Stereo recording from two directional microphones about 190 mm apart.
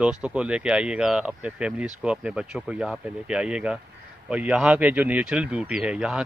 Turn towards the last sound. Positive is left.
turn(degrees=-5)  # may be behind; listen again after turning